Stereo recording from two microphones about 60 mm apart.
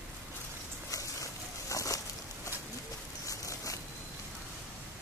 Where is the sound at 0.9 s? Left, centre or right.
Left.